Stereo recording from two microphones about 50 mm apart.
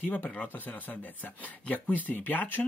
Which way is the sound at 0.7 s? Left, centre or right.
Left.